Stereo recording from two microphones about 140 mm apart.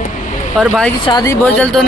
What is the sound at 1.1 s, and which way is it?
Speech, 30° left (ahead or behind).